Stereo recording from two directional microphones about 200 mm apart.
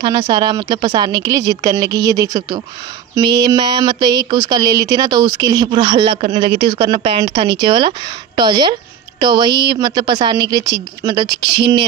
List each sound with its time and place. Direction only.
0.0 s speech: 20° right (ahead or behind)
11.4 s speech: 60° right (ahead or behind)